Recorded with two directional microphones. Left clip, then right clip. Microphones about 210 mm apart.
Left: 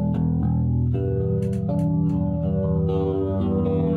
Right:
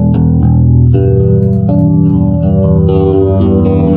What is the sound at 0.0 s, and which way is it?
Music, 40° right (ahead or behind).